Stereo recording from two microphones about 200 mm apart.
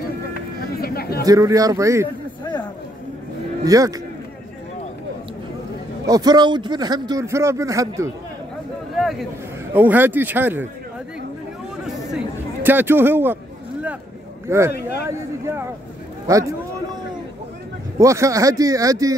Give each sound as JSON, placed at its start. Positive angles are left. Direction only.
{"t": 0.3, "sound": "a sound", "side_deg": 50}
{"t": 1.2, "sound": "a man's voice", "side_deg": -15}
{"t": 2.0, "sound": "a sound", "side_deg": 20}
{"t": 3.6, "sound": "a man's voice", "side_deg": -15}
{"t": 6.0, "sound": "a man's voice", "side_deg": -20}
{"t": 9.8, "sound": "a man's voice", "side_deg": -10}
{"t": 11.8, "sound": "chatter", "side_deg": 0}
{"t": 12.6, "sound": "a man's voice", "side_deg": -10}
{"t": 14.7, "sound": "speech", "side_deg": 55}
{"t": 15.0, "sound": "a man's voice", "side_deg": -15}
{"t": 17.9, "sound": "a man's voice", "side_deg": -15}